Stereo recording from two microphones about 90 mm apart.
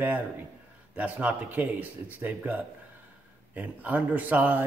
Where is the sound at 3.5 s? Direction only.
20° right (ahead or behind).